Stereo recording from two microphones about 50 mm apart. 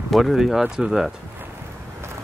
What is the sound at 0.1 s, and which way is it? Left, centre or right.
Speech, centre.